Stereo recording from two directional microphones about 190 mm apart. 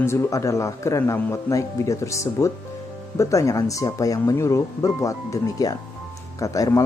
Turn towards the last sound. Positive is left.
turn(degrees=15)  # may be behind; listen again after turning